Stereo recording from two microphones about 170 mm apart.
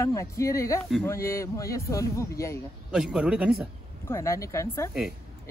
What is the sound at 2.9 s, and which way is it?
Speech, 5° right (ahead or behind).